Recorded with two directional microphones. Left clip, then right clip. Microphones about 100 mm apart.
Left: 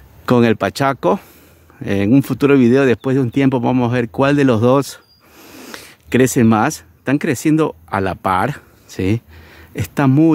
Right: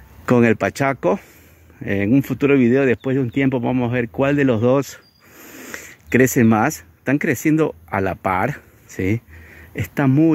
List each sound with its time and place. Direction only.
0.2 s speech: 20° left (ahead or behind); by 2.0 s 45° left (ahead or behind)
2.0 s speech: 65° left (ahead or behind)
4.7 s speech: 35° left (ahead or behind)
5.3 s a sound: 15° left (ahead or behind)
6.4 s speech: 25° left (ahead or behind); by 10.3 s 40° left (ahead or behind)